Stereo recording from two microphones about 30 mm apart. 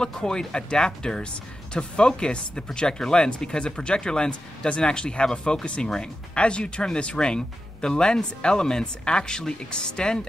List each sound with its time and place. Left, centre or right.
0.1 s speech: left